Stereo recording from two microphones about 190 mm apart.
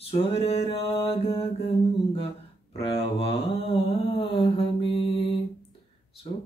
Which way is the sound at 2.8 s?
30° left (ahead or behind).